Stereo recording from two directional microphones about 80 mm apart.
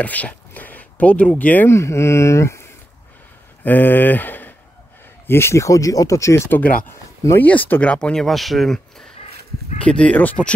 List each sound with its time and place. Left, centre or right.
0.0 s speech: centre
1.7 s speech: left
3.6 s speech: left
7.3 s speech: left